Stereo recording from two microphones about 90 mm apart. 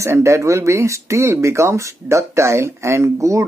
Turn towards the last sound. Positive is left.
turn(degrees=-35)  # may be behind; listen again after turning